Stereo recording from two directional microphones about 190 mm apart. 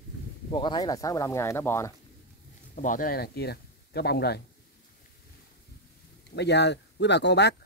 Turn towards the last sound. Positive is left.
turn(degrees=65)  # may be behind; listen again after turning